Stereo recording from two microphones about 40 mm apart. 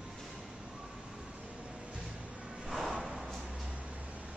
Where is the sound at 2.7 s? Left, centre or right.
Centre.